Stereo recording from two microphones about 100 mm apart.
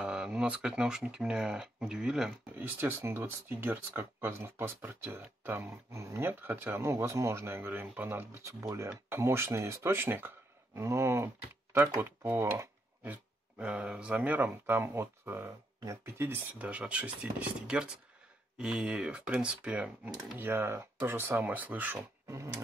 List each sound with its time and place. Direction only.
0.0 s speech: 10° right (ahead or behind)
2.5 s speech: 20° right (ahead or behind)
8.1 s speech: 30° right (ahead or behind)
22.3 s speech: 30° right (ahead or behind)